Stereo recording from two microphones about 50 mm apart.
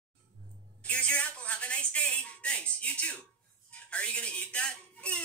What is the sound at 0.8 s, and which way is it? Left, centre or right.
Speech, left.